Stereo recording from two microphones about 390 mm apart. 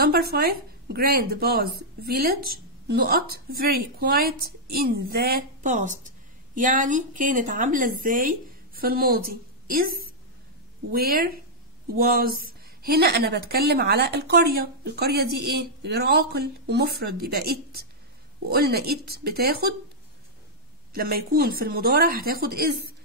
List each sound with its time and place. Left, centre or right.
0.0 s a woman's voice: right
20.9 s a woman's voice: right